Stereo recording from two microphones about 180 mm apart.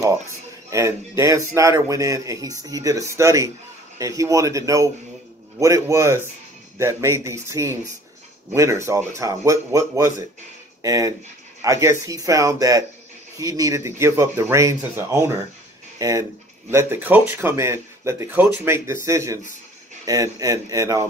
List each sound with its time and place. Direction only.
0.7 s speech: 15° right (ahead or behind)